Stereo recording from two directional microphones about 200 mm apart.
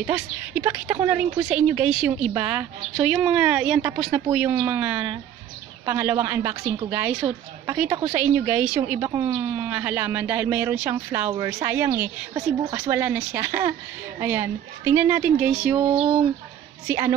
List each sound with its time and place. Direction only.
0.0 s a woman's voice: 5° right (ahead or behind)
15.9 s a sound: 30° right (ahead or behind)
16.8 s speech: 15° right (ahead or behind)